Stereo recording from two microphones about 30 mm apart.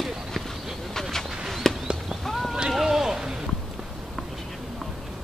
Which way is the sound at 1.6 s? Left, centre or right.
Centre.